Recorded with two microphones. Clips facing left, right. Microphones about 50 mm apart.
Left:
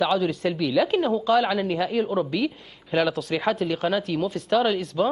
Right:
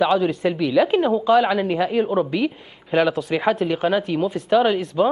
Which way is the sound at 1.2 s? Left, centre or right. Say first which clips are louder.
Right 4 dB; centre.